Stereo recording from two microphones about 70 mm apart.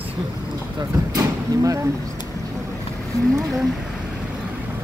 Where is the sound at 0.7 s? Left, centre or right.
Right.